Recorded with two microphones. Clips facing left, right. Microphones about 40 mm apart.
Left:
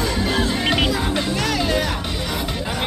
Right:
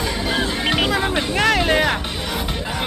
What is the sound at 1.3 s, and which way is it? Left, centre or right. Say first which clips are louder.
Speech: right 7 dB; right.